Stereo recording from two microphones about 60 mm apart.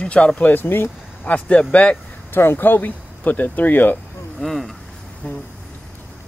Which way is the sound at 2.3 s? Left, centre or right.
Left.